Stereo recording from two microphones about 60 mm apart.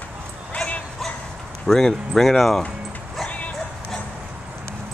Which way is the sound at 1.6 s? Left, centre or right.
Centre.